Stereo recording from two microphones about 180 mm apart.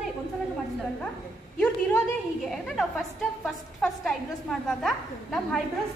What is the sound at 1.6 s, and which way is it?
A woman's voice, 5° left (ahead or behind).